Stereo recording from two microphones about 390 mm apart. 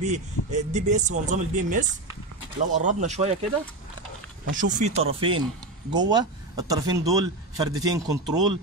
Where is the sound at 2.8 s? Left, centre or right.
Centre.